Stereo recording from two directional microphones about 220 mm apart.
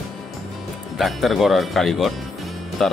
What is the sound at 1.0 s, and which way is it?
Speech, centre (ahead or behind).